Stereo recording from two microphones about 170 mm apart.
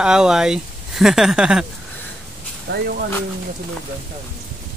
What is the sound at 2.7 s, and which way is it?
Speech, 85° right.